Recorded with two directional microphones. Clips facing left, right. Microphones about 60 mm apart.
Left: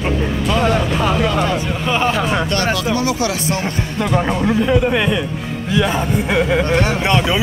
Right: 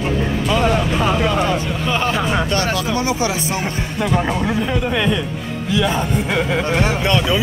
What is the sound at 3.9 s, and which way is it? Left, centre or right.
Speech, centre.